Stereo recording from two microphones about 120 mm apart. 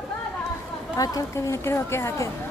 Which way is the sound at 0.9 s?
30° left (ahead or behind).